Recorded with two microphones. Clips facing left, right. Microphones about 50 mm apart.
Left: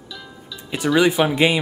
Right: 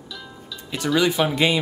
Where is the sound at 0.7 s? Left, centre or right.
Centre.